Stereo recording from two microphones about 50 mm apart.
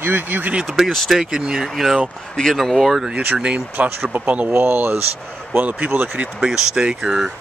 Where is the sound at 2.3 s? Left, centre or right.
Centre.